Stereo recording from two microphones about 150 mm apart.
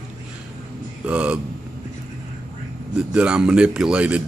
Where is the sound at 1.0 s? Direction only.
10° right (ahead or behind).